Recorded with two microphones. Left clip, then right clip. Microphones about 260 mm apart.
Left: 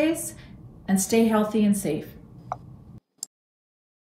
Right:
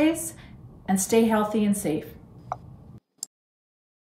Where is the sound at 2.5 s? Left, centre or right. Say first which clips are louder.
Even; centre.